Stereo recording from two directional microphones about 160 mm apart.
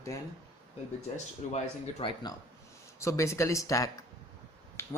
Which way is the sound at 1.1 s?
45° left (ahead or behind).